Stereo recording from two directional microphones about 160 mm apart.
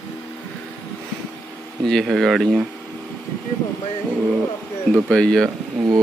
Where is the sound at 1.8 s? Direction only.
Centre (ahead or behind).